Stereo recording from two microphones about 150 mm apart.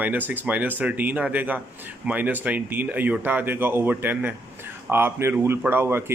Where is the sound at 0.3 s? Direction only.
10° right (ahead or behind).